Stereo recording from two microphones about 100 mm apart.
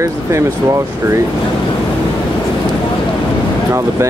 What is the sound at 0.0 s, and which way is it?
Speech, 30° right (ahead or behind).